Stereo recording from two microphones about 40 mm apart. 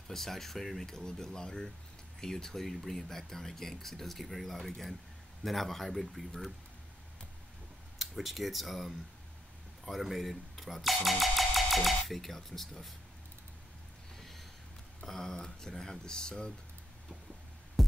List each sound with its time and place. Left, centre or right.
0.1 s speech: centre
8.0 s speech: centre
14.1 s a sound: centre
15.0 s speech: centre
17.8 s music: centre